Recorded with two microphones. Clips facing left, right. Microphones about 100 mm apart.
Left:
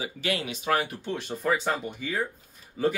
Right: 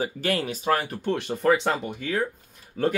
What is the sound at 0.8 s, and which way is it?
Speech, 60° right (ahead or behind).